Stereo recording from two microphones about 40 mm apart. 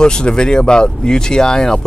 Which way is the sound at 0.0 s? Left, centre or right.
Left.